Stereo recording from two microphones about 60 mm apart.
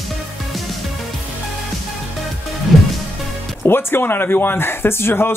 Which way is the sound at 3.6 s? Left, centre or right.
Left.